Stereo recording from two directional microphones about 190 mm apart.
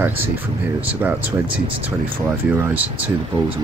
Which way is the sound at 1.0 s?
10° right (ahead or behind).